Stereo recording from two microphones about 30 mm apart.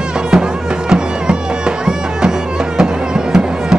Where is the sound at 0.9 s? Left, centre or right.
Right.